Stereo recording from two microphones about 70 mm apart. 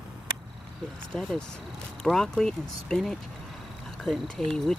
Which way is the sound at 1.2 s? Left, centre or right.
Centre.